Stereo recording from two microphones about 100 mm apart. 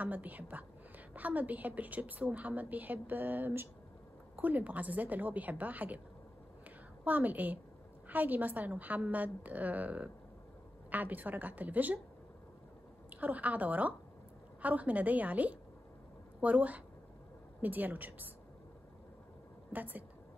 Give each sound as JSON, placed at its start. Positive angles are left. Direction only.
{"t": 0.0, "sound": "a woman's voice", "side_deg": -15}
{"t": 7.1, "sound": "a woman's voice", "side_deg": -15}
{"t": 13.2, "sound": "a woman's voice", "side_deg": -15}
{"t": 19.7, "sound": "a woman's voice", "side_deg": -15}